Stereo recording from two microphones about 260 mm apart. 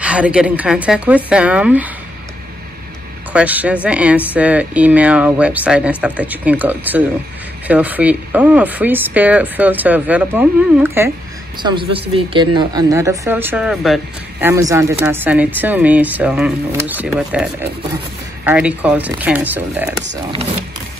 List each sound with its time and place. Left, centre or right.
0.0 s speech: centre
3.3 s speech: centre
11.9 s speech: right; by 14.5 s centre
14.5 s speech: centre